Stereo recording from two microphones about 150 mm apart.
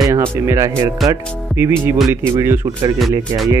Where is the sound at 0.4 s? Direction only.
20° right (ahead or behind).